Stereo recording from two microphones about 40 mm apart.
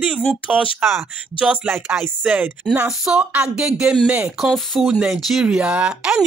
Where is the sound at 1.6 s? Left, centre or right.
Right.